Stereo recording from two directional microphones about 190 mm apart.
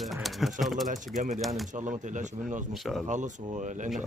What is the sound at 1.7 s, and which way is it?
Speech, 40° right (ahead or behind).